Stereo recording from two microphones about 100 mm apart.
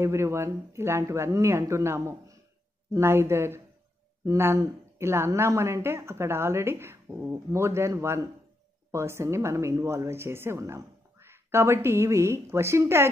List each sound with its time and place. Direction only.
0.0 s speech: 25° right (ahead or behind)